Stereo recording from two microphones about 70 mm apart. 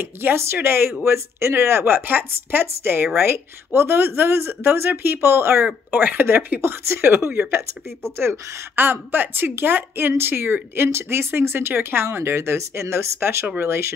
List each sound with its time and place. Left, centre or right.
0.0 s a woman's voice: right